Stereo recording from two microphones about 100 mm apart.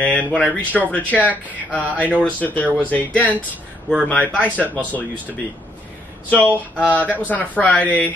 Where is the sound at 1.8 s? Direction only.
15° right (ahead or behind).